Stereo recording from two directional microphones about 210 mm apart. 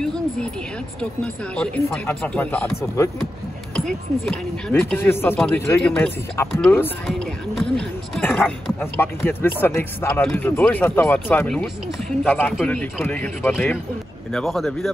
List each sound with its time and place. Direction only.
1.2 s speech: 5° left (ahead or behind)